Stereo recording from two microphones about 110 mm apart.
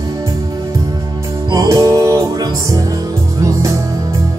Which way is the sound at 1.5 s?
35° right (ahead or behind).